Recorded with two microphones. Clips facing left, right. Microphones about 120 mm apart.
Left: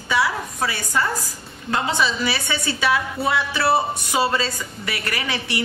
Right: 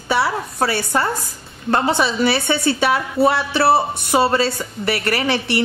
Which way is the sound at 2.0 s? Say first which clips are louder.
Right 5 dB; 55° right (ahead or behind).